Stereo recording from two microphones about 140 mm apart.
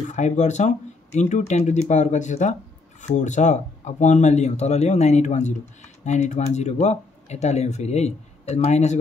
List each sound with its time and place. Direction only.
0.1 s speech: 55° left (ahead or behind)